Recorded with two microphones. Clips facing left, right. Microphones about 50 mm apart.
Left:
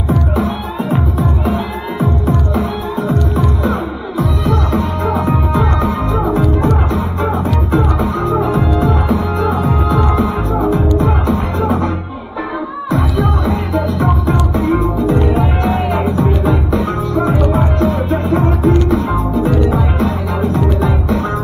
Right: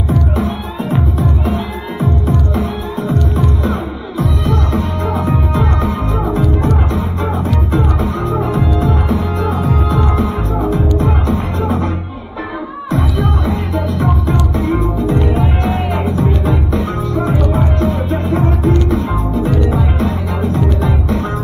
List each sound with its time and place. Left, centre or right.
0.8 s music: left
5.0 s music: centre
8.5 s music: centre
10.0 s music: centre
11.0 s music: left
13.7 s music: centre
14.2 s music: left
15.3 s music: centre
17.8 s music: centre
19.5 s music: centre